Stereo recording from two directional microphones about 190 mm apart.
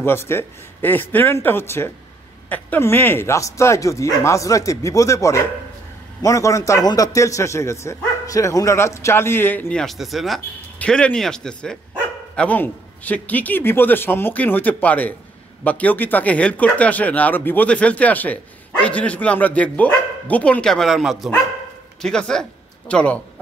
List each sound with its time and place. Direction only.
0.0 s speech: 10° left (ahead or behind)